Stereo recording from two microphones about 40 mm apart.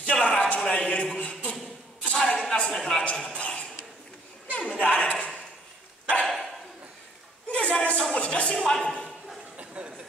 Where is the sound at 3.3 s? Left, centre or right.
Left.